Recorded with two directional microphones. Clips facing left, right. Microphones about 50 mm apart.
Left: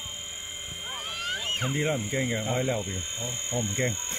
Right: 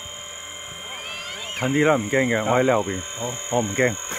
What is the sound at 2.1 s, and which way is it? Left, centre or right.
Speech, right.